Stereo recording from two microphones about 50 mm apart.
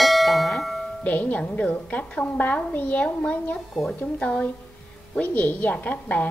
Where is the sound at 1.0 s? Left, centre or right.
Left.